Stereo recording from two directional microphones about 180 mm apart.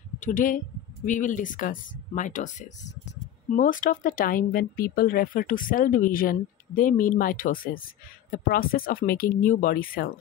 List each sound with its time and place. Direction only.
0.2 s speech: 45° left (ahead or behind)